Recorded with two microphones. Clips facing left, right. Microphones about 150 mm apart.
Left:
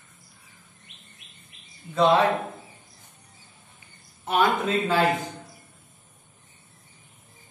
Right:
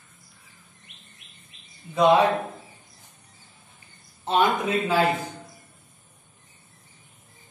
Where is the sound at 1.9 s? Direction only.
10° right (ahead or behind).